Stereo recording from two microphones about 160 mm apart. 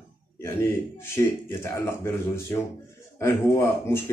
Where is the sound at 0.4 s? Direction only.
15° left (ahead or behind).